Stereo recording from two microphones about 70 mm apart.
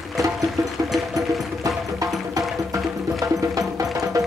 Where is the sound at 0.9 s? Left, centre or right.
Centre.